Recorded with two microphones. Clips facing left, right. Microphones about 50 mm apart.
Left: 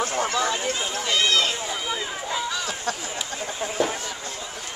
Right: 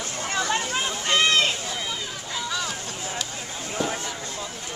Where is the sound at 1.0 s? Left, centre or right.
Right.